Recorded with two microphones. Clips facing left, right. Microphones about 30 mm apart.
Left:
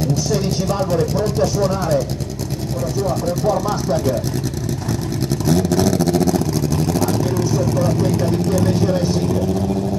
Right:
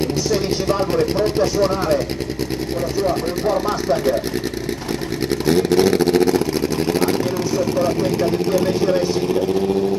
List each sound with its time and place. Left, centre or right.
0.0 s vehicle: right
1.4 s speech: right
5.5 s vehicle: right